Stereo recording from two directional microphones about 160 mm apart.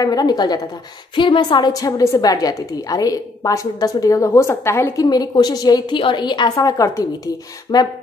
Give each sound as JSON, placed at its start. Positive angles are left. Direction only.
{"t": 0.0, "sound": "a woman's voice", "side_deg": 25}